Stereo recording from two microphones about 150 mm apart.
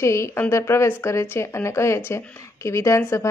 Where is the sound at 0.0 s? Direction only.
20° left (ahead or behind).